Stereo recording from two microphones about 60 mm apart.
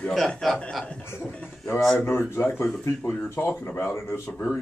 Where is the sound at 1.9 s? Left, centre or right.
Left.